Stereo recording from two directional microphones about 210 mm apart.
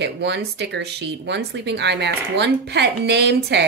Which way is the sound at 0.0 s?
55° right (ahead or behind).